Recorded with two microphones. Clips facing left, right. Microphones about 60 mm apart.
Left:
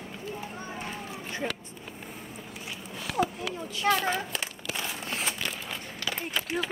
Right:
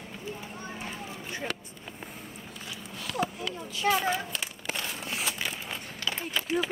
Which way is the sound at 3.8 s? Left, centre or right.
Centre.